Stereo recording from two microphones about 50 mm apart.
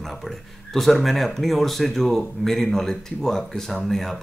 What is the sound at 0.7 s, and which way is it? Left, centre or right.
Speech, centre.